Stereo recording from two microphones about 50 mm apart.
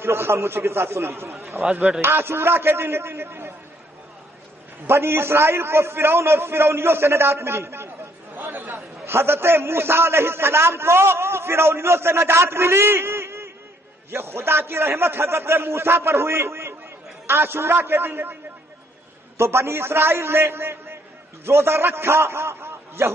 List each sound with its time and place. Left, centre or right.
0.0 s a man's voice: right
1.6 s a man's voice: right
4.8 s a man's voice: right
19.3 s a man's voice: right